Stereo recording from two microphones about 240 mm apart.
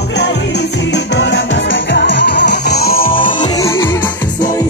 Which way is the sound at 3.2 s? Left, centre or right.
Centre.